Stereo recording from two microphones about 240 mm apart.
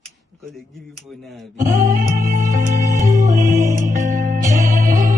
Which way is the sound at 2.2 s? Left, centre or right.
Right.